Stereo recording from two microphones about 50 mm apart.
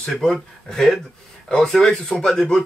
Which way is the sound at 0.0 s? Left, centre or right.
Centre.